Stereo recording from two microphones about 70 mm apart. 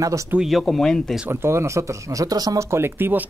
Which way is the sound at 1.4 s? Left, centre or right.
Right.